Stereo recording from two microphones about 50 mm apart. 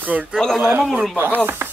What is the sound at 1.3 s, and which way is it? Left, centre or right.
Chopping, right.